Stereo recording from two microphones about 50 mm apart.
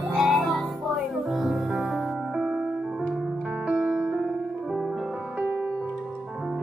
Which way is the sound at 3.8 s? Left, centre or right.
Centre.